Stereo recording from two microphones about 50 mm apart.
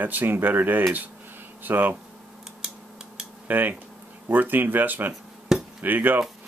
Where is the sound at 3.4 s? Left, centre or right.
Right.